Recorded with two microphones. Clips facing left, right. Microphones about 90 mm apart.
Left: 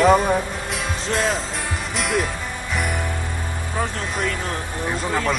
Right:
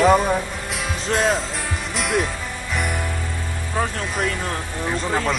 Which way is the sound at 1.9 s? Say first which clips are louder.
Right 1 dB; centre (ahead or behind).